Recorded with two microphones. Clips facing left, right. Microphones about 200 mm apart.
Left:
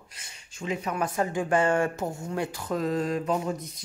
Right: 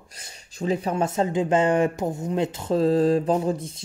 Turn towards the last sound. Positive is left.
turn(degrees=-30)  # may be behind; listen again after turning